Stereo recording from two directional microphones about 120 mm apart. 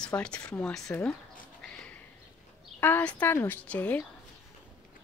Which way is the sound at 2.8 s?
15° left (ahead or behind).